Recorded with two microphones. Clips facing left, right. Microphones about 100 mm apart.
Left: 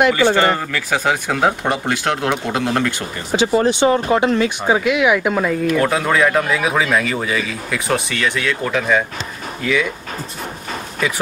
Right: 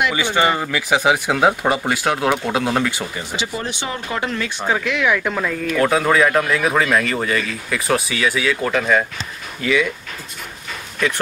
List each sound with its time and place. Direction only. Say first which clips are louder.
0.4 s speech: left 1 dB; 10° right (ahead or behind)
3.3 s speech: left 14 dB; 50° left (ahead or behind)
3.6 s speech: left 12 dB; 30° left (ahead or behind)
4.2 s speech: left 7 dB; 20° left (ahead or behind)
5.8 s speech: right 3 dB; centre (ahead or behind)
11.0 s speech: right 1 dB; 5° left (ahead or behind)